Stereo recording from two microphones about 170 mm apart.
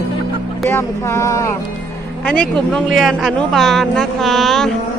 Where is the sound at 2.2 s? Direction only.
5° left (ahead or behind).